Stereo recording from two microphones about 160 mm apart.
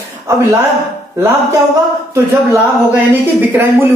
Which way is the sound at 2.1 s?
15° right (ahead or behind).